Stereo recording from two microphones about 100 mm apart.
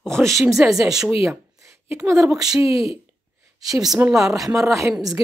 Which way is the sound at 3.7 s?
5° right (ahead or behind).